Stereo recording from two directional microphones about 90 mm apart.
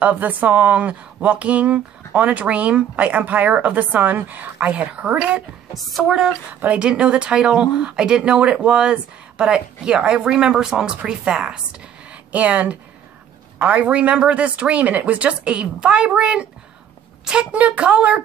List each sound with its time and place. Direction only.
0.0 s speech: 20° right (ahead or behind)
5.9 s speech: centre (ahead or behind)
6.5 s speech: 20° right (ahead or behind)